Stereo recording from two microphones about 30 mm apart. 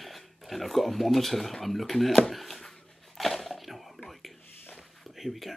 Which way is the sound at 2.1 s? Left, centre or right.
Centre.